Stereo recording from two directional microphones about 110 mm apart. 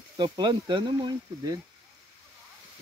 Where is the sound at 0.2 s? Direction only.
45° right (ahead or behind).